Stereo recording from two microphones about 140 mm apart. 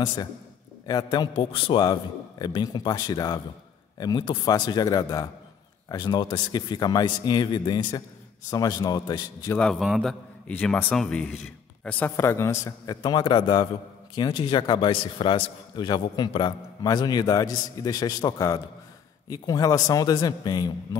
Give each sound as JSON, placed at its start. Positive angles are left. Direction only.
{"t": 0.0, "sound": "a man's voice", "side_deg": 30}
{"t": 9.5, "sound": "speech", "side_deg": 5}
{"t": 10.4, "sound": "a man's voice", "side_deg": 10}